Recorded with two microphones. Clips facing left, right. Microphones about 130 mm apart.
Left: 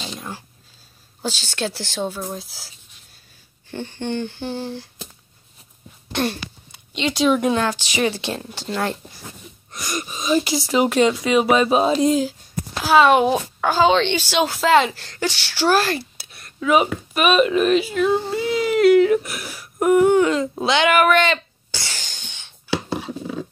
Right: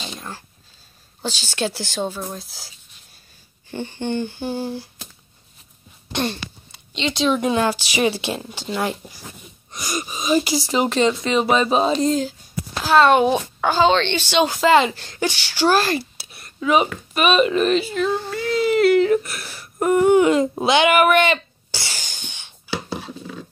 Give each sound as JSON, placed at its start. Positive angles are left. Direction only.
{"t": 1.2, "sound": "speech", "side_deg": 0}
{"t": 3.7, "sound": "a woman's voice", "side_deg": -10}
{"t": 6.1, "sound": "speech", "side_deg": 10}
{"t": 7.5, "sound": "a woman's voice", "side_deg": -10}
{"t": 18.1, "sound": "speech", "side_deg": 20}
{"t": 18.6, "sound": "speech", "side_deg": 0}
{"t": 19.6, "sound": "a sound", "side_deg": 0}
{"t": 20.2, "sound": "a sound", "side_deg": -15}